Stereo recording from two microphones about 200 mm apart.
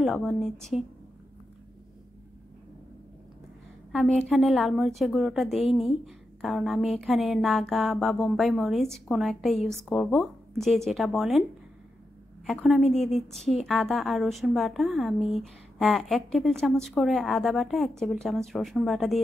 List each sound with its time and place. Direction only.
0.0 s a woman's voice: centre (ahead or behind)
3.9 s a woman's voice: centre (ahead or behind)
12.4 s a woman's voice: centre (ahead or behind)
12.8 s a woman's voice: 35° left (ahead or behind)
13.3 s a woman's voice: centre (ahead or behind)